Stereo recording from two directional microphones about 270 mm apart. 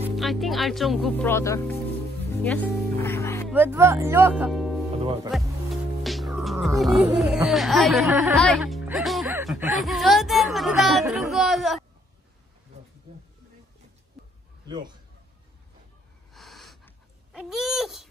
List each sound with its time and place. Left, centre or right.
0.0 s speech: centre
2.4 s music: centre
3.5 s speech: centre
5.0 s speech: centre
6.0 s music: centre
6.8 s speech: centre
14.7 s speech: centre
16.3 s wheeze: centre